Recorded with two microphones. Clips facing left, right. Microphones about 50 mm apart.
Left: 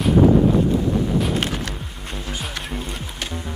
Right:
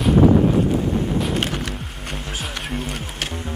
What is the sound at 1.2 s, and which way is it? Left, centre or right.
Music, centre.